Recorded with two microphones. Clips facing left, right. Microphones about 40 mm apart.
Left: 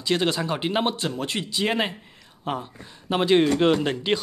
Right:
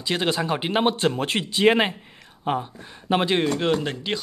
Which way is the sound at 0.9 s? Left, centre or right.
Right.